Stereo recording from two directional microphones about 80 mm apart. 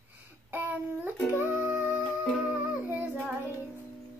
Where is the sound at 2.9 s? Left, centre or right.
Right.